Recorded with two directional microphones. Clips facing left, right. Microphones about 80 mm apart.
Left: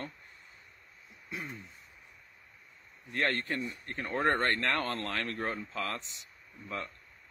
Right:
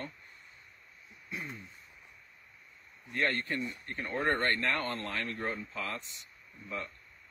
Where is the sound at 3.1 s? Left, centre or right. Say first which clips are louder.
Even; left.